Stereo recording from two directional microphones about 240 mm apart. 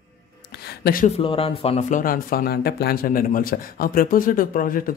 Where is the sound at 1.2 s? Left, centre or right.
Left.